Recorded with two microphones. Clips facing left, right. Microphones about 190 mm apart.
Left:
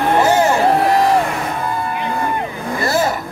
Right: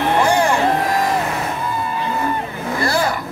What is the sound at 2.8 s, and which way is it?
Vehicle, 20° left (ahead or behind).